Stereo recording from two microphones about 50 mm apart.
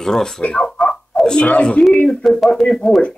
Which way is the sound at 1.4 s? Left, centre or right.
Left.